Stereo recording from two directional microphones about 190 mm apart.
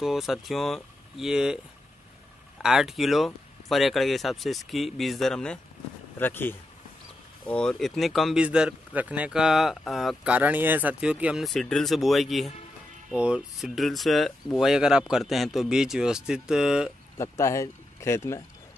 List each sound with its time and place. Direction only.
0.0 s speech: centre (ahead or behind)
2.6 s speech: 5° right (ahead or behind)
17.2 s speech: 15° left (ahead or behind)